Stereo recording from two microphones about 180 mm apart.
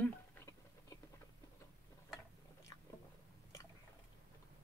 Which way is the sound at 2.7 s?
20° left (ahead or behind).